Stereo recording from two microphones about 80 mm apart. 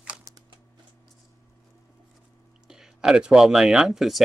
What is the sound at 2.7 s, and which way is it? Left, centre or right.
Speech, centre.